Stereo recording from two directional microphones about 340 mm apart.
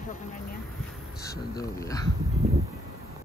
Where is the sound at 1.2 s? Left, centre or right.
Centre.